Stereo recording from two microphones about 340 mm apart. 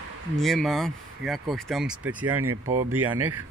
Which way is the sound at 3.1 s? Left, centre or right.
Right.